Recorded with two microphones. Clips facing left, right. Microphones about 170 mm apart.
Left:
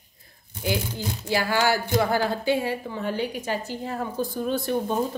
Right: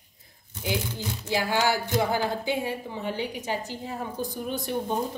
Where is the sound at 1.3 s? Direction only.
15° right (ahead or behind).